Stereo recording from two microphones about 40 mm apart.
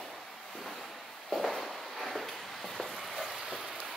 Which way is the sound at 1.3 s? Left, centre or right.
Centre.